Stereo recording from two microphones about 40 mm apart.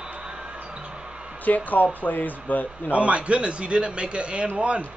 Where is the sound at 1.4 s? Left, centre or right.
Left.